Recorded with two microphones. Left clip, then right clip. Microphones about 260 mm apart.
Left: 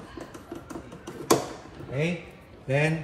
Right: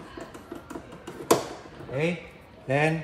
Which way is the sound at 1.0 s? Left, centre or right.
Centre.